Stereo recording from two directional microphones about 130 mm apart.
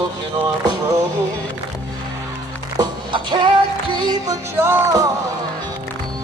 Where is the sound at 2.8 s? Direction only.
35° right (ahead or behind).